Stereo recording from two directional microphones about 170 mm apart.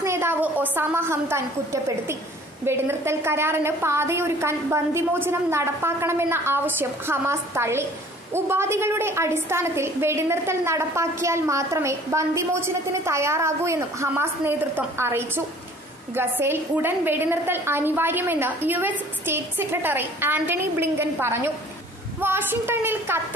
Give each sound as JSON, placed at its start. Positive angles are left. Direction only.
{"t": 0.0, "sound": "a woman's voice", "side_deg": -15}